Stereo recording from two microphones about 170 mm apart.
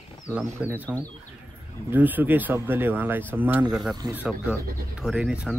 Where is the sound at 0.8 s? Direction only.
10° left (ahead or behind).